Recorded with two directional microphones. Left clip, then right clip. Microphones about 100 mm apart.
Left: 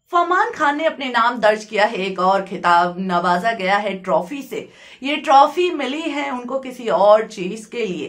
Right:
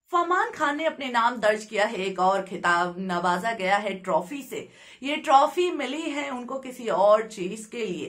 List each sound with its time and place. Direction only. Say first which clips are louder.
0.1 s a woman's voice: left 7 dB; 25° left (ahead or behind)